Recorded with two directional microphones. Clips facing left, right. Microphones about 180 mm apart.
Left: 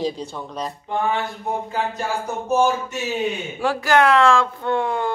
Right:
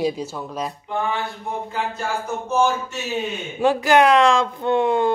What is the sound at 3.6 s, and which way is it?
Speech, 20° right (ahead or behind).